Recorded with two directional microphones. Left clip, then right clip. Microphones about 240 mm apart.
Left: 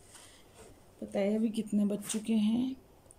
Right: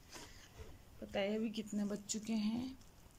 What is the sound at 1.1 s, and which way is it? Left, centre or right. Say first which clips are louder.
Speech: left 7 dB; centre.